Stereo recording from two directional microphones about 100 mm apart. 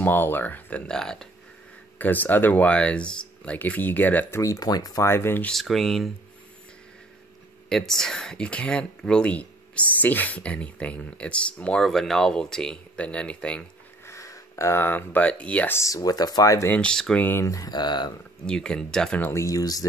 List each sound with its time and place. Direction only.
0.0 s speech: 20° left (ahead or behind)
2.0 s speech: 15° left (ahead or behind)
4.4 s speech: 35° left (ahead or behind)
5.0 s speech: 25° left (ahead or behind)
5.5 s speech: centre (ahead or behind)
7.7 s speech: 5° left (ahead or behind)
14.0 s speech: 30° left (ahead or behind); by 15.7 s 10° left (ahead or behind)
15.7 s speech: 30° left (ahead or behind)
16.6 s speech: 10° left (ahead or behind)
17.2 s speech: 20° left (ahead or behind)
17.5 s speech: 40° left (ahead or behind)
18.5 s speech: 10° left (ahead or behind)
19.2 s speech: 30° left (ahead or behind)